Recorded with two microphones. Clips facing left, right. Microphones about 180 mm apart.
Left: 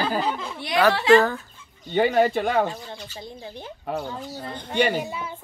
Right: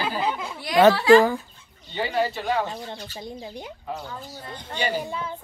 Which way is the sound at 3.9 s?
65° left (ahead or behind).